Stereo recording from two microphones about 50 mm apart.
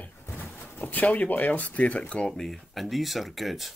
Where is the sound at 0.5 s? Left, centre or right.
Left.